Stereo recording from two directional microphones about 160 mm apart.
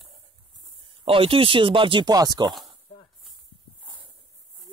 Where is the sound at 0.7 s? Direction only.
35° right (ahead or behind).